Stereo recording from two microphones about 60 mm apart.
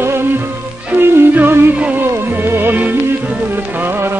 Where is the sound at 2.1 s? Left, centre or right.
Right.